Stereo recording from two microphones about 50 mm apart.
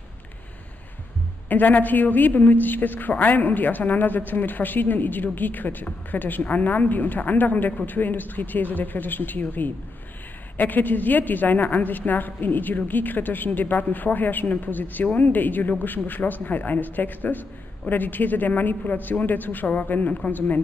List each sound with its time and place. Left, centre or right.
1.5 s a woman's voice: left